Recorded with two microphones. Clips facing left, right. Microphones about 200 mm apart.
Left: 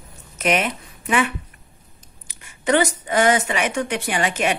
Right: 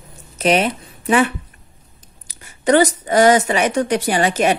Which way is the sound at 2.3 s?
40° right (ahead or behind).